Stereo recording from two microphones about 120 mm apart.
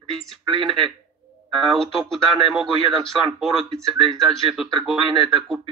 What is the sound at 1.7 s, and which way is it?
Speech, 5° left (ahead or behind).